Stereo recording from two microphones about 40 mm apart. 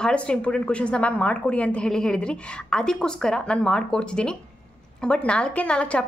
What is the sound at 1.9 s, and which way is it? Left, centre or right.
A woman's voice, centre.